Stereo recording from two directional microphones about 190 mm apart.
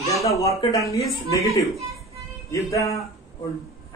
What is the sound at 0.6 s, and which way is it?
Speech, 15° left (ahead or behind).